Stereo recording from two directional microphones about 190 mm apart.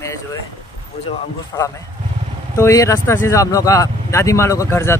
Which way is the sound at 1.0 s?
30° left (ahead or behind).